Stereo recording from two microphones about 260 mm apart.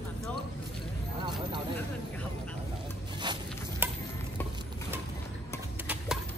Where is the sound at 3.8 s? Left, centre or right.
Centre.